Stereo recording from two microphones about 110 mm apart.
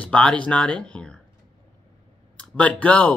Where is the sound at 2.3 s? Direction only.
10° left (ahead or behind).